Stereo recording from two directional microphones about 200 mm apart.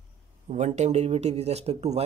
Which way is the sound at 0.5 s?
35° right (ahead or behind).